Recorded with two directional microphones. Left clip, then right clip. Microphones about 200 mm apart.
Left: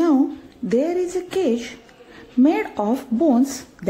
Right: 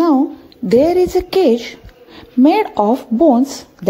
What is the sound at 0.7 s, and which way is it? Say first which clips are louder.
A woman's voice: right 9 dB; 30° right (ahead or behind).